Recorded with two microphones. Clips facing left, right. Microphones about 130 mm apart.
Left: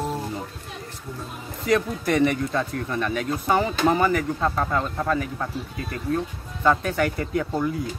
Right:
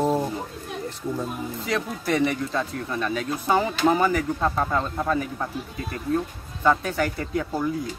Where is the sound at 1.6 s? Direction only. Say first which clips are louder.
Left 6 dB; centre (ahead or behind).